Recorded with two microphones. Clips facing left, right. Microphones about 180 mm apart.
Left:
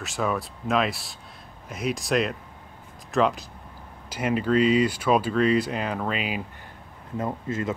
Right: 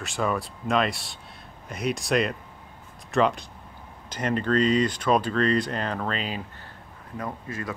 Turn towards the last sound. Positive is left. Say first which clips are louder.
# left 5 dB
turn(degrees=20)  # may be behind; listen again after turning